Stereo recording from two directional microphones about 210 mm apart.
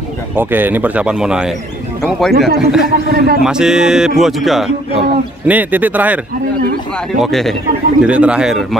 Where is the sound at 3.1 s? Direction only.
50° right (ahead or behind).